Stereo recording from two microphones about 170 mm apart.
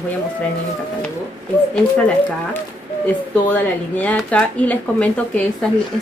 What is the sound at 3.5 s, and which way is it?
A woman's voice, 10° left (ahead or behind).